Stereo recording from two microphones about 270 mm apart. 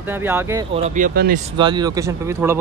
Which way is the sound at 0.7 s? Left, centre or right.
Right.